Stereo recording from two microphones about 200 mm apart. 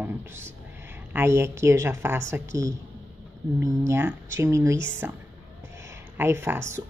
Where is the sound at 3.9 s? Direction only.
15° right (ahead or behind).